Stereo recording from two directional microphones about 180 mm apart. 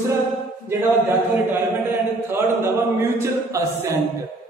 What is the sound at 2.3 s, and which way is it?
Speech, 15° right (ahead or behind).